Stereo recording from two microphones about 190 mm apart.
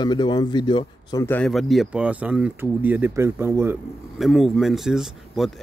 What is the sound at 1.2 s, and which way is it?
Speech, 5° left (ahead or behind).